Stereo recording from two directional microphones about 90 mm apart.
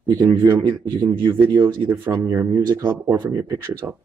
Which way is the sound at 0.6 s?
60° right (ahead or behind).